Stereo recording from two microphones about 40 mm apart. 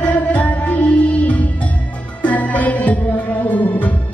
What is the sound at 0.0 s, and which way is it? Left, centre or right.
Music, left.